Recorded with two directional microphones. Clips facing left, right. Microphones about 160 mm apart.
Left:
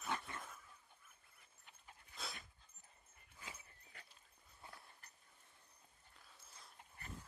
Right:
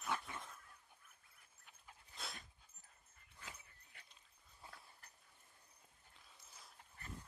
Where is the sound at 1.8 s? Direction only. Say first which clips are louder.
Left 1 dB; centre (ahead or behind).